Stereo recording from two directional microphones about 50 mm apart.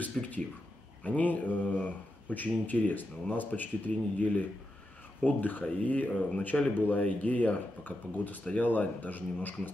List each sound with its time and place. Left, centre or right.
0.0 s speech: left